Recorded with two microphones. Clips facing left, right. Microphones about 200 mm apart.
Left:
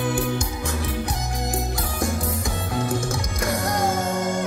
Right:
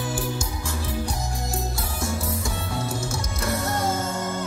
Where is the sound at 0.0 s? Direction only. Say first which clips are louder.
Left 5 dB; 60° left (ahead or behind).